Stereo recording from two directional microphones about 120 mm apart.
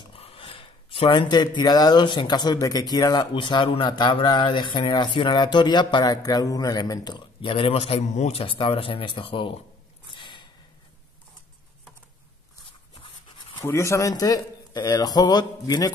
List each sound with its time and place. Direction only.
0.2 s speech: 50° left (ahead or behind); by 8.4 s 65° left (ahead or behind)
8.4 s speech: 50° left (ahead or behind)
10.1 s snort: 45° left (ahead or behind)
12.9 s a sound: 45° left (ahead or behind)
13.6 s speech: 25° left (ahead or behind)